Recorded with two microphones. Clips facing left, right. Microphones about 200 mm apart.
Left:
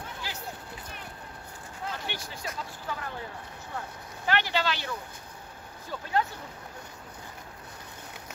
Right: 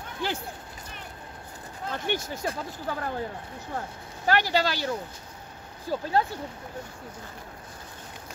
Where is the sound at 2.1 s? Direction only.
50° right (ahead or behind); by 6.2 s 35° right (ahead or behind).